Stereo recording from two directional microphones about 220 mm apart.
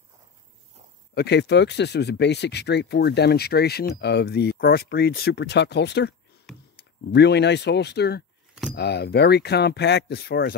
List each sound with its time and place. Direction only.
1.1 s speech: 50° left (ahead or behind)
6.5 s clicking: centre (ahead or behind)
7.1 s speech: 50° left (ahead or behind)